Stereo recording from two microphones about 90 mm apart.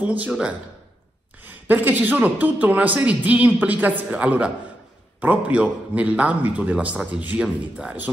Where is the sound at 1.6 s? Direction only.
20° right (ahead or behind).